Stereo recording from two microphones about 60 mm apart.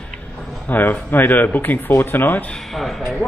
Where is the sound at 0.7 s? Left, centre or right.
Left.